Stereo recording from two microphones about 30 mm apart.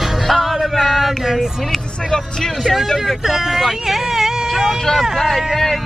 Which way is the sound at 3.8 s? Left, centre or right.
Centre.